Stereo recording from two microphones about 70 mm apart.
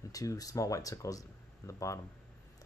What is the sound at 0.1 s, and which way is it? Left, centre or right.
Speech, left.